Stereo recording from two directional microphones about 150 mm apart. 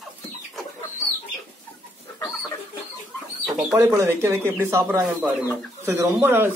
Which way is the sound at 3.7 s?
20° right (ahead or behind).